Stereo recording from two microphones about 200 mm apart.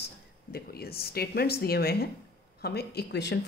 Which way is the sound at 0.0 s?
50° left (ahead or behind).